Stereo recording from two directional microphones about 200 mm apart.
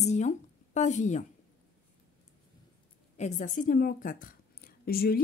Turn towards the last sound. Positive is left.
turn(degrees=50)  # may be behind; listen again after turning